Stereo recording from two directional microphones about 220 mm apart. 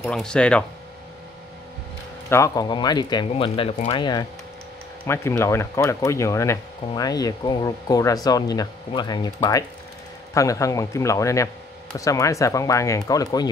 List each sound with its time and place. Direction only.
0.0 s speech: 5° left (ahead or behind)
2.2 s speech: 10° left (ahead or behind)